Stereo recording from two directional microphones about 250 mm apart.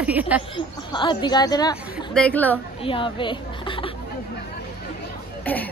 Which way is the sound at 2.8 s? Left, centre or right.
Left.